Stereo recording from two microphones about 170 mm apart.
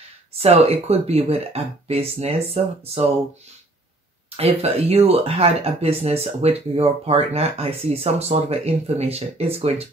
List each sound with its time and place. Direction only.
0.3 s speech: 35° right (ahead or behind)
4.4 s speech: 35° right (ahead or behind)